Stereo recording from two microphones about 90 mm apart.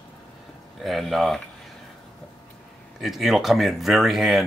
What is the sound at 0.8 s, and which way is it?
Speech, centre (ahead or behind).